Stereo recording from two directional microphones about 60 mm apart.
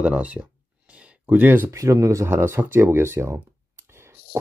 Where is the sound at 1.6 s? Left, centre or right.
Right.